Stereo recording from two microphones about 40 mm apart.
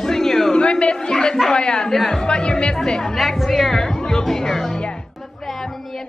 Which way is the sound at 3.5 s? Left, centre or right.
Centre.